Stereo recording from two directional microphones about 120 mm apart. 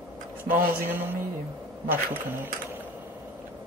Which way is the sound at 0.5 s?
15° right (ahead or behind).